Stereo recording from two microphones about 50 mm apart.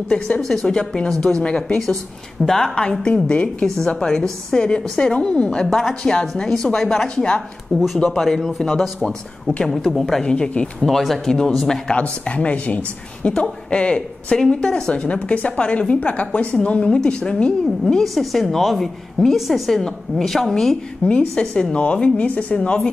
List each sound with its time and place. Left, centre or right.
0.4 s a woman's voice: centre
2.4 s a woman's voice: centre
3.6 s a woman's voice: centre
5.7 s a woman's voice: centre
7.7 s a woman's voice: centre
9.8 s a woman's voice: centre
10.2 s speech: left
10.8 s a woman's voice: centre
11.9 s speech: left
17.8 s a woman's voice: centre
21.1 s speech: centre
22.6 s a woman's voice: centre